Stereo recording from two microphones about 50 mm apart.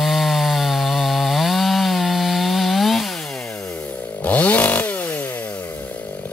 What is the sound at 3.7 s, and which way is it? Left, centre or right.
Chainsaw, left.